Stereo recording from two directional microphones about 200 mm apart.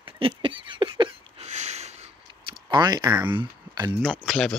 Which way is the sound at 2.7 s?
20° right (ahead or behind).